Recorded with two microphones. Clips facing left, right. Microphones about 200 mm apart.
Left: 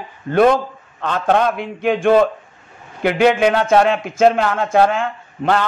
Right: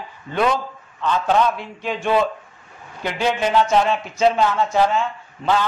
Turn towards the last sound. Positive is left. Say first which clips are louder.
# left 2 dB
turn(degrees=60)  # may be behind; listen again after turning